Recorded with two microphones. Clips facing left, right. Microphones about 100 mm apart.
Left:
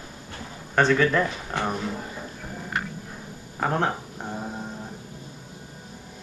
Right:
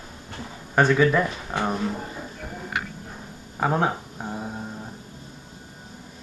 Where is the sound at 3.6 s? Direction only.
5° right (ahead or behind).